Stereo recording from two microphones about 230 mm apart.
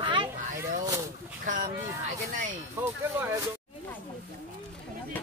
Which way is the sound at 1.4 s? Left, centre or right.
Right.